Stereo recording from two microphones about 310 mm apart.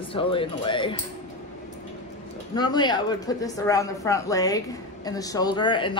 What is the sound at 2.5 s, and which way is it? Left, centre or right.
Speech, centre.